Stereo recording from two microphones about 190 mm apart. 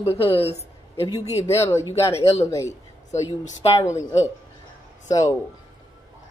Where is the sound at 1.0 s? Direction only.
20° left (ahead or behind).